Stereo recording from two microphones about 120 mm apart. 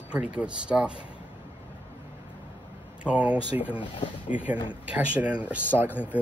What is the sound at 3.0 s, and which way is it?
Speech, 10° right (ahead or behind).